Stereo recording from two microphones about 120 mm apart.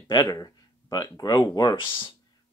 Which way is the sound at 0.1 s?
35° left (ahead or behind).